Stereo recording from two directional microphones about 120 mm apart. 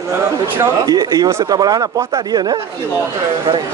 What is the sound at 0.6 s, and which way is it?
Speech, 30° right (ahead or behind).